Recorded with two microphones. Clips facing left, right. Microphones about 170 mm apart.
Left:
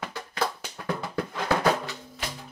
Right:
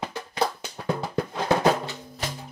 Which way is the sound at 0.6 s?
25° right (ahead or behind).